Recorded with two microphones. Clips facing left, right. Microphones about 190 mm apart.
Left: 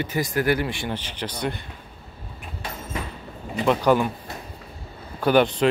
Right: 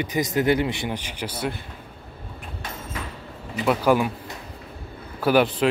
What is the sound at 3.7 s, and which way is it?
Speech, 5° right (ahead or behind).